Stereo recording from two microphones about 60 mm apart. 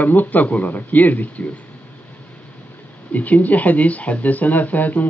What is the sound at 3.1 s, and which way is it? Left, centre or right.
Speech, left.